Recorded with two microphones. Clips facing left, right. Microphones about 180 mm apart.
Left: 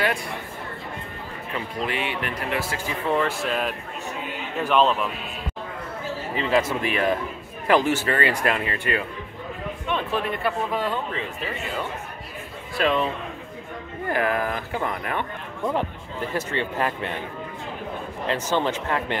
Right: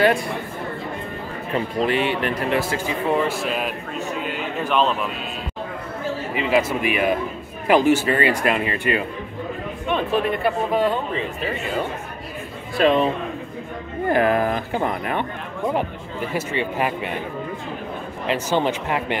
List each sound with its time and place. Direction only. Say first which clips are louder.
1.5 s a man's voice: right 7 dB; 35° right (ahead or behind); by 4.9 s centre (ahead or behind)
6.3 s speech: right 2 dB; 10° right (ahead or behind)
12.7 s a man's voice: right 5 dB; 25° right (ahead or behind)
16.3 s speech: right 2 dB; 10° right (ahead or behind)
18.2 s speech: right 3 dB; 15° right (ahead or behind)